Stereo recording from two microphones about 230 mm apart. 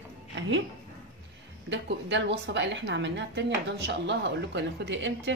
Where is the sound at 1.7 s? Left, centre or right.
Right.